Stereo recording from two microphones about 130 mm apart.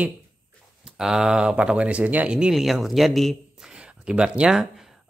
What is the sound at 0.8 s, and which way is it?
Speech, 5° right (ahead or behind).